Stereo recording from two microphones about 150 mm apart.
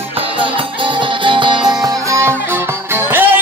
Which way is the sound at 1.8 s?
25° right (ahead or behind).